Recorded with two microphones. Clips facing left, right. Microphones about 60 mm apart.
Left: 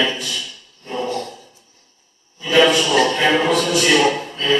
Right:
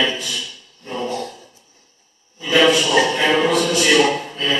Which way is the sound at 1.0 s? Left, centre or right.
Centre.